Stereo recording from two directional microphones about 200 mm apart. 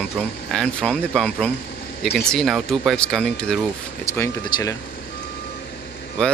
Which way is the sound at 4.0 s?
15° left (ahead or behind).